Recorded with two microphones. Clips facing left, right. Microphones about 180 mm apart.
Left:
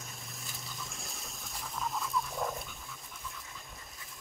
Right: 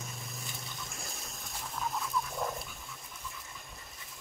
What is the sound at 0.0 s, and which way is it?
Dog, centre (ahead or behind).